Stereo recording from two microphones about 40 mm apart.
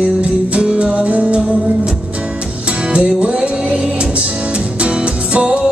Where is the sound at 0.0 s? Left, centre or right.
Right.